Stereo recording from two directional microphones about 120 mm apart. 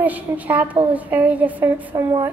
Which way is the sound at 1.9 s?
35° right (ahead or behind).